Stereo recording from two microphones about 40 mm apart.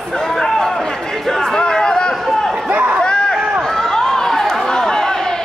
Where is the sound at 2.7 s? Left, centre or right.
Right.